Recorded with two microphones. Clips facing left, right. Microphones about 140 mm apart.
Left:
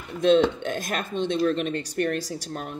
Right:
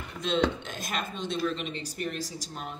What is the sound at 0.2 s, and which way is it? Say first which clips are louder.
Speech: left 8 dB; 50° left (ahead or behind).